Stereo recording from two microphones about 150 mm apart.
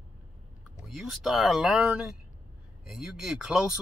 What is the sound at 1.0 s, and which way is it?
A man's voice, centre (ahead or behind).